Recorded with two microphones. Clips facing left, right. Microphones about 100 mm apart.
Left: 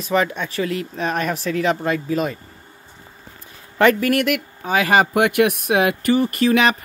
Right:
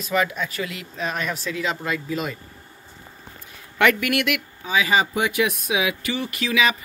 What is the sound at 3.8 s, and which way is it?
Speech, 35° left (ahead or behind).